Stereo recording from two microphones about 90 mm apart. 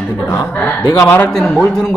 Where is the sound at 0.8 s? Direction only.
40° left (ahead or behind).